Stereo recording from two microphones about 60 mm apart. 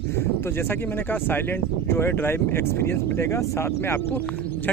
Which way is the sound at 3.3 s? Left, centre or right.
Left.